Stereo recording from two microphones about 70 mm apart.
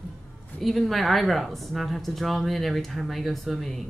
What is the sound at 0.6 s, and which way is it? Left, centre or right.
Speech, centre.